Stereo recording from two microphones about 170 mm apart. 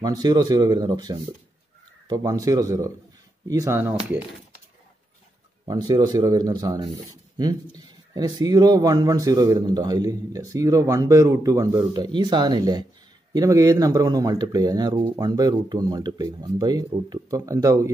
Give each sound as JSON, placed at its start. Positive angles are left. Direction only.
{"t": 0.0, "sound": "a man's voice", "side_deg": -25}
{"t": 5.7, "sound": "a man's voice", "side_deg": -25}
{"t": 8.1, "sound": "a man's voice", "side_deg": -20}